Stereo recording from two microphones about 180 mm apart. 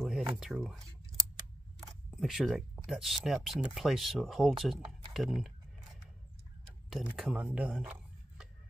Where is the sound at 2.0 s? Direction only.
Centre (ahead or behind).